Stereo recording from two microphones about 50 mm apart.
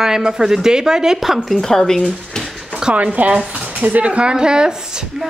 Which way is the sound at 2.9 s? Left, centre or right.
Right.